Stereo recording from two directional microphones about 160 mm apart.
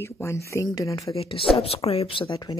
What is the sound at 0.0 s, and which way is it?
Speech, 15° left (ahead or behind).